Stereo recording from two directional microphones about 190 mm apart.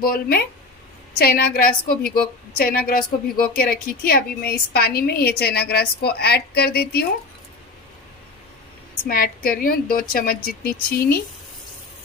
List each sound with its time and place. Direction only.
0.0 s a woman's voice: 50° left (ahead or behind)
9.0 s a woman's voice: 50° left (ahead or behind)